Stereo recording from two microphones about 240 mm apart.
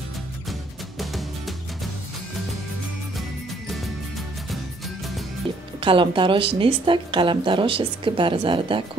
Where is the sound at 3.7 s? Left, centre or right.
Centre.